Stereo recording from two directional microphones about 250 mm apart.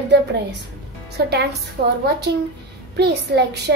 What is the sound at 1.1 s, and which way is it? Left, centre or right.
A child's voice, right.